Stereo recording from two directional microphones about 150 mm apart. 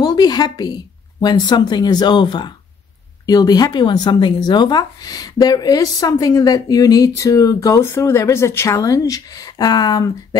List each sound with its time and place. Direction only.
0.0 s speech: 25° left (ahead or behind)